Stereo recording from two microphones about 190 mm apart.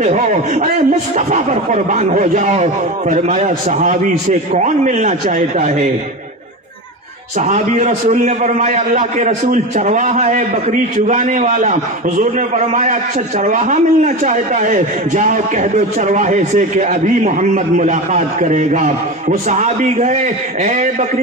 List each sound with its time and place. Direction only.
0.0 s a man's voice: 40° right (ahead or behind)
7.3 s a man's voice: 40° right (ahead or behind)